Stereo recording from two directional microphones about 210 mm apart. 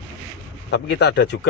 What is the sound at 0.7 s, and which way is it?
Speech, 55° left (ahead or behind).